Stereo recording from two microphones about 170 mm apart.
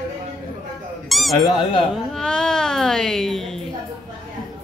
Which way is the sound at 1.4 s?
25° left (ahead or behind).